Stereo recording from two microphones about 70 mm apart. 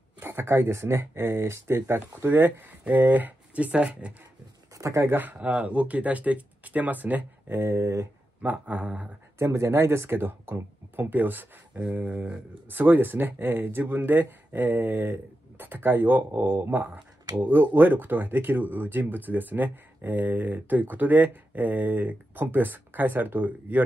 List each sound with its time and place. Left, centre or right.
0.2 s speech: right; by 4.1 s centre
4.7 s speech: right
5.1 s speech: right
5.4 s speech: centre; by 8.1 s right
8.4 s speech: centre
9.4 s speech: right